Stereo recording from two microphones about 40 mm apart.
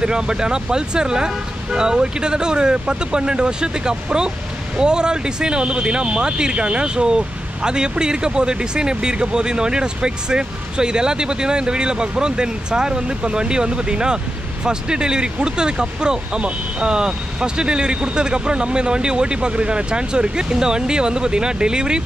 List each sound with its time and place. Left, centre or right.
0.0 s speech: right